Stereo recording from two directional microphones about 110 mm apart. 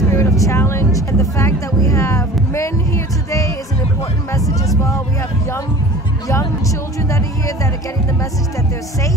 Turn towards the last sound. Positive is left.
turn(degrees=30)  # may be behind; listen again after turning